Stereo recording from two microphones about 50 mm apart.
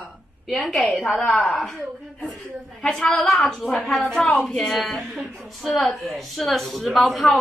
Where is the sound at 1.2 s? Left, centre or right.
Left.